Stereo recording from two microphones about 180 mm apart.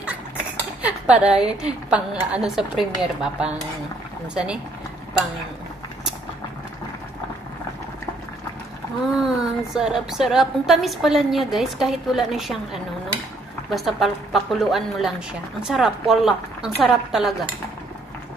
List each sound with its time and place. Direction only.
0.8 s a woman's voice: 5° right (ahead or behind)
9.2 s a woman's voice: 5° right (ahead or behind)